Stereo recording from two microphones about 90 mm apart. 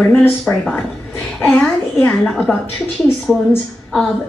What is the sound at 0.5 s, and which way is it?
A woman's voice, 15° left (ahead or behind).